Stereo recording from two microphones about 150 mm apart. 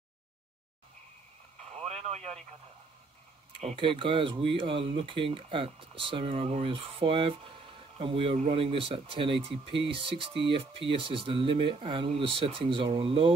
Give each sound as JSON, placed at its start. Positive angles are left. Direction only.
{"t": 2.0, "sound": "radio", "side_deg": -45}
{"t": 3.6, "sound": "speech", "side_deg": -35}